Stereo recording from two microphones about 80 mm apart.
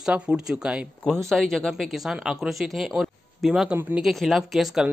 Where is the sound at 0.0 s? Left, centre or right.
Centre.